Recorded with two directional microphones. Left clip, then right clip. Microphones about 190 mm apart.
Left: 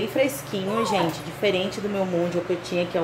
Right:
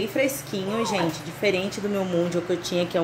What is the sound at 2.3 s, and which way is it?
Speech, 30° right (ahead or behind).